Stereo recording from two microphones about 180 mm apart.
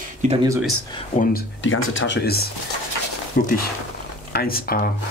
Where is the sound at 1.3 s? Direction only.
90° left.